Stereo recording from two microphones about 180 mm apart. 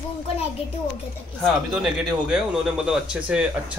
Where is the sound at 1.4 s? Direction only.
Centre (ahead or behind).